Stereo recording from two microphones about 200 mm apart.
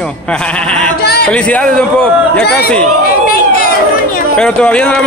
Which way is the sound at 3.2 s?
45° left (ahead or behind).